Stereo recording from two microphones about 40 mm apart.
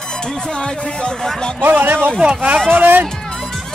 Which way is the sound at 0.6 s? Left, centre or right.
Left.